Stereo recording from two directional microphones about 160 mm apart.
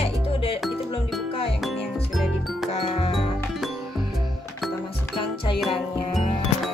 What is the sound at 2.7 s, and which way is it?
Music, 40° left (ahead or behind).